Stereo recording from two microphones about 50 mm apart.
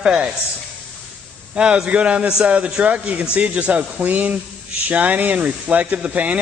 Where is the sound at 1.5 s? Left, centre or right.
Centre.